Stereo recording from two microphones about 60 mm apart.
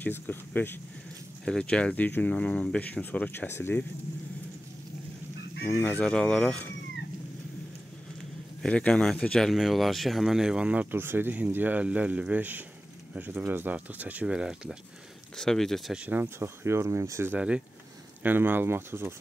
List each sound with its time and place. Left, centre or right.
0.0 s speech: left
1.4 s speech: centre; by 2.3 s left
2.3 s speech: centre; by 3.8 s left
5.9 s speech: centre
8.6 s speech: centre
9.6 s speech: centre
10.9 s speech: right
14.2 s speech: centre
15.3 s speech: centre
16.3 s speech: right
18.2 s speech: right